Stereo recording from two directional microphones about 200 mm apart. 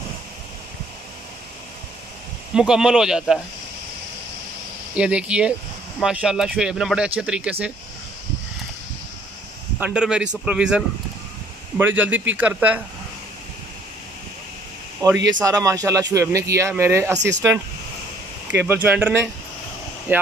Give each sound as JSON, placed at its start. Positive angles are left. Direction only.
{"t": 2.5, "sound": "speech", "side_deg": -5}
{"t": 4.9, "sound": "speech", "side_deg": -5}
{"t": 9.8, "sound": "speech", "side_deg": -5}
{"t": 15.0, "sound": "speech", "side_deg": -20}
{"t": 18.5, "sound": "speech", "side_deg": -10}